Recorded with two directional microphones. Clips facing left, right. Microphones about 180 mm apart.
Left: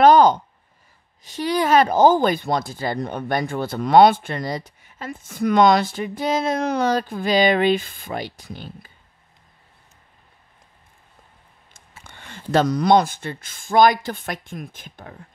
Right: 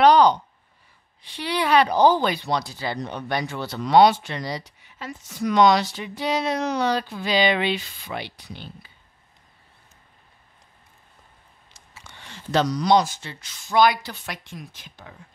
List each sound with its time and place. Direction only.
0.0 s a sound: 45° left (ahead or behind)
1.2 s speech: 45° left (ahead or behind)
11.7 s speech: 50° left (ahead or behind)